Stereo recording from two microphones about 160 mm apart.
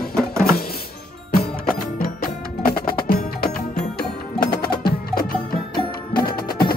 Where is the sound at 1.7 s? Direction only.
65° left (ahead or behind).